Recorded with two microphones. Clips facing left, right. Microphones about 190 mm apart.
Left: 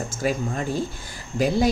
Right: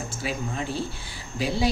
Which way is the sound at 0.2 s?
45° left (ahead or behind).